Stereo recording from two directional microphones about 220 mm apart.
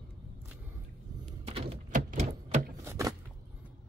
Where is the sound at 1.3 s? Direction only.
25° right (ahead or behind).